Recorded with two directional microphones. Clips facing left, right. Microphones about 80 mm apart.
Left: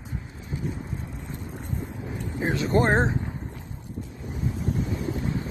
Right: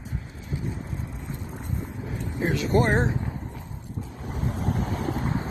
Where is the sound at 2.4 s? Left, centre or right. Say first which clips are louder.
Even; left.